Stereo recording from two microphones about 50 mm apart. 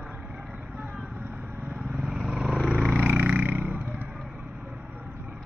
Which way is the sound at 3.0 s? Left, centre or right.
Right.